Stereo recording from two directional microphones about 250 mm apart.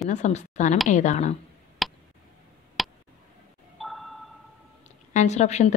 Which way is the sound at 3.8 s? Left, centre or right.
Centre.